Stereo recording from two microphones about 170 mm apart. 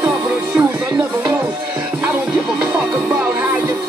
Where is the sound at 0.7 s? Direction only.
20° right (ahead or behind).